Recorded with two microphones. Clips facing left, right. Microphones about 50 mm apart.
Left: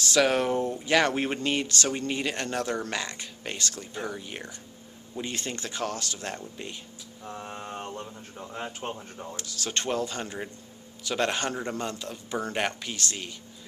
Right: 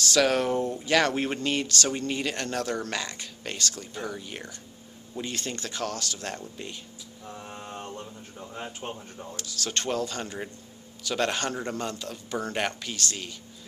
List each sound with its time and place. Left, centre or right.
0.0 s speech: centre
7.2 s mantra: left
8.4 s speech: left
9.4 s speech: centre